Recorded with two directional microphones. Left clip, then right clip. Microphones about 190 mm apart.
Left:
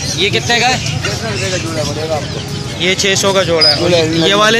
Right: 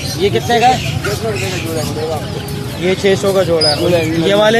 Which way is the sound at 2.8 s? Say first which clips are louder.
Left 1 dB; 10° right (ahead or behind).